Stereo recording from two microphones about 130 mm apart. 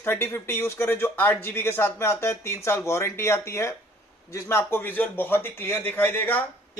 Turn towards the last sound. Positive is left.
turn(degrees=15)  # may be behind; listen again after turning